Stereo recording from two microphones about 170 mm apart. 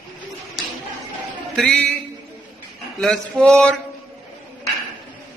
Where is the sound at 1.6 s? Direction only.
5° left (ahead or behind).